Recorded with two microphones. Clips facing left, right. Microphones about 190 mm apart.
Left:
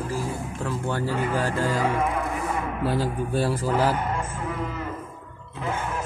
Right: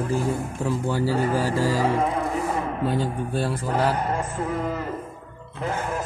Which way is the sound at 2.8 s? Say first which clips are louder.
Left 1 dB; 5° left (ahead or behind).